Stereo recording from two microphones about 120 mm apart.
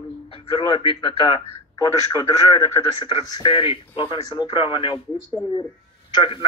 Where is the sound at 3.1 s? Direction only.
45° left (ahead or behind).